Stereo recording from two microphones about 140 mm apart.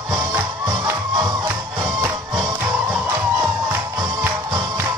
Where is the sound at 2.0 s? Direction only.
25° right (ahead or behind).